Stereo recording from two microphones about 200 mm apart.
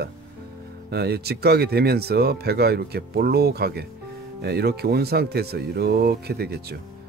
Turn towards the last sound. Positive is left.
turn(degrees=-55)  # may be behind; listen again after turning